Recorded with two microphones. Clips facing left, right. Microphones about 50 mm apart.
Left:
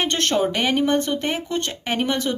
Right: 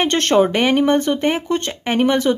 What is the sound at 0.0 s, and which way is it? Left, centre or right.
Speech, right.